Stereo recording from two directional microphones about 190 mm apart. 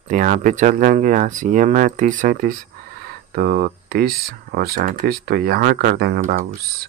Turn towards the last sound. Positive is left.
turn(degrees=-55)  # may be behind; listen again after turning